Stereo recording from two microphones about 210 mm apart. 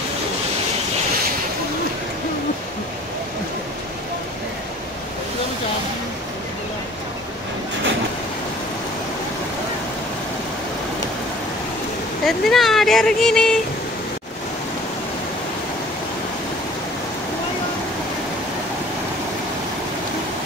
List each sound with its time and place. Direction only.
12.3 s speech: centre (ahead or behind)